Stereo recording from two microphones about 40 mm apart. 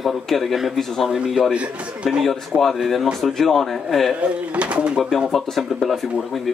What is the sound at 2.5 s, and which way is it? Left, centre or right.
A man's voice, centre.